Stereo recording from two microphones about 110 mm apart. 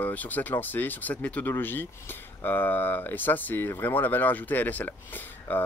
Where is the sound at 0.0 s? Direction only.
15° left (ahead or behind).